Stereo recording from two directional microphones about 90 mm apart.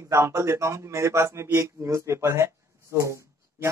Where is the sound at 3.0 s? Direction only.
35° right (ahead or behind).